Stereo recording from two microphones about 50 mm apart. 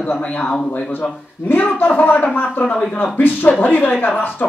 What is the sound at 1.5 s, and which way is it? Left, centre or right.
Speech, left.